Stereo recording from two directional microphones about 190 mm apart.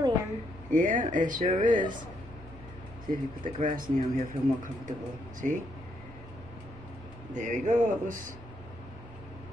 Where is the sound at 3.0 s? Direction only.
45° right (ahead or behind).